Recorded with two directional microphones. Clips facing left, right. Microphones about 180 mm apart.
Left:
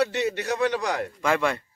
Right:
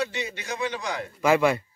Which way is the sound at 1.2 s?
10° right (ahead or behind).